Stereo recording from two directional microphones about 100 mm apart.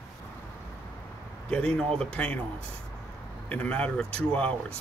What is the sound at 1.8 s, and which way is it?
Speech, 5° left (ahead or behind).